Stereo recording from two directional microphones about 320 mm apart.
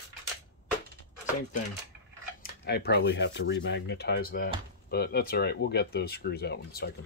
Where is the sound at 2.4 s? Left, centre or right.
Left.